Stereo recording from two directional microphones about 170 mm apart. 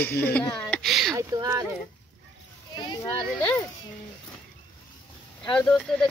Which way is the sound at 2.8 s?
25° left (ahead or behind).